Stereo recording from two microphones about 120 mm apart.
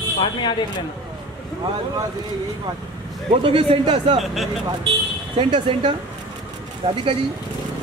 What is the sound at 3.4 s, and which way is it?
Speech, 50° right (ahead or behind).